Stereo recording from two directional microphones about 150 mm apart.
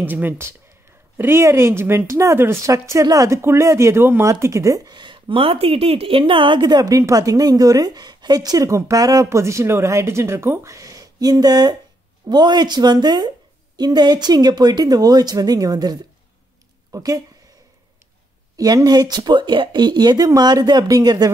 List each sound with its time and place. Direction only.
0.0 s a woman's voice: 15° right (ahead or behind)
18.6 s a woman's voice: 25° right (ahead or behind)